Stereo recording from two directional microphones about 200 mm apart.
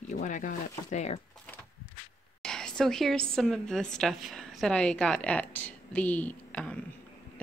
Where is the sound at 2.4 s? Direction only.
5° left (ahead or behind).